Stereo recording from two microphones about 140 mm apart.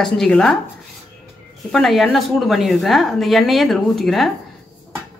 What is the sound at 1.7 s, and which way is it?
A woman's voice, centre (ahead or behind).